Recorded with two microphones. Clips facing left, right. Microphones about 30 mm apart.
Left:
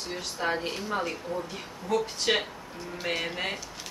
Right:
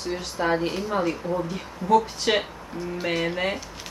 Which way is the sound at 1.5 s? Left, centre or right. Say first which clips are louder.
Right 11 dB; centre.